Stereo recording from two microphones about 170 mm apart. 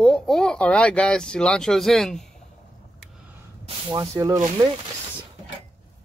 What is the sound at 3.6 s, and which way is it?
Speech, 30° right (ahead or behind).